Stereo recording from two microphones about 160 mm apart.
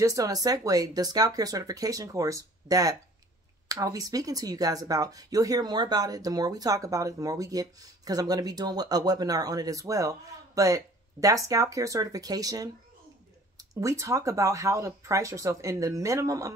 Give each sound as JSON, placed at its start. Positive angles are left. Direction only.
{"t": 0.0, "sound": "speech", "side_deg": -20}